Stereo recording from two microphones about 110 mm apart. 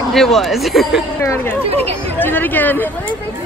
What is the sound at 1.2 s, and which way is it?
Speech, 25° left (ahead or behind).